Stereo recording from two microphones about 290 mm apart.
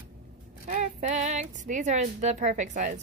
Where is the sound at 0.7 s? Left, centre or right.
Right.